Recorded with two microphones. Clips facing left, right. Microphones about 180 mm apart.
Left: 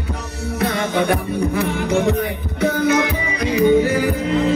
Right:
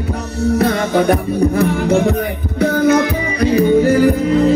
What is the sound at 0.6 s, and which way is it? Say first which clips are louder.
Music: right 2 dB; 40° right (ahead or behind).